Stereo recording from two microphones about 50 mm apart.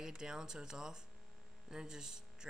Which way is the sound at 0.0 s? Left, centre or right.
Centre.